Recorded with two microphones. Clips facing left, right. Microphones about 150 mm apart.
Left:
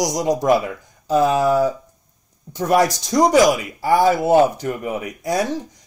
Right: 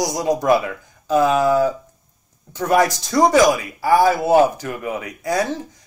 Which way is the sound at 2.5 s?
15° left (ahead or behind).